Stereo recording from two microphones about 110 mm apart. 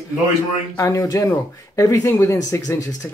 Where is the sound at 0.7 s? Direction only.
30° left (ahead or behind).